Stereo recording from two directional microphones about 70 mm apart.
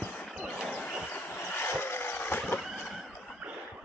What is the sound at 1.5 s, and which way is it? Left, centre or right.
Horse, left.